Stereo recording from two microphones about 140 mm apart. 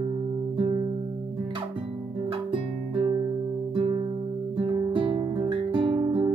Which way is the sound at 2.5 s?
35° right (ahead or behind).